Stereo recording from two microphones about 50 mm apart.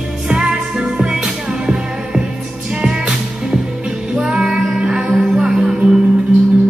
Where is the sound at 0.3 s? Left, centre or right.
Centre.